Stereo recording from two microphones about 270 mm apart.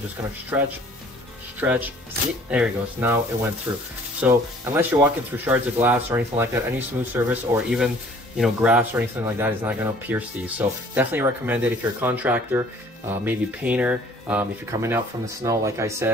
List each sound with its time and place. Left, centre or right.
0.5 s speech: centre
4.2 s speech: centre